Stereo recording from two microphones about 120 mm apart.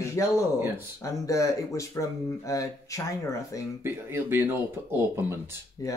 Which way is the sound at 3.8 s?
20° right (ahead or behind).